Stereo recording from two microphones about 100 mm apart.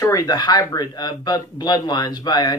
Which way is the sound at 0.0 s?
40° left (ahead or behind).